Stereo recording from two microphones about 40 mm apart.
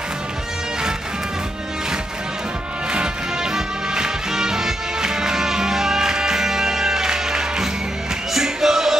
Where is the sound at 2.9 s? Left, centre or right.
Right.